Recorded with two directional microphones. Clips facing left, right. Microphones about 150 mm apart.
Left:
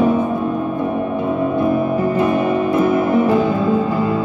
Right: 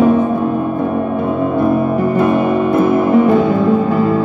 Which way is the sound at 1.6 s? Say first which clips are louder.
Right 3 dB; 40° right (ahead or behind).